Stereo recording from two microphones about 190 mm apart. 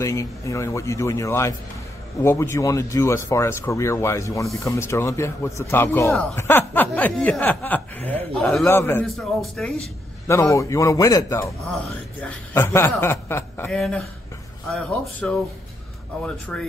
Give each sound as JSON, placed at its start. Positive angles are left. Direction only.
{"t": 0.0, "sound": "speech", "side_deg": 15}
{"t": 9.0, "sound": "a man's voice", "side_deg": 0}
{"t": 10.2, "sound": "a man's voice", "side_deg": 15}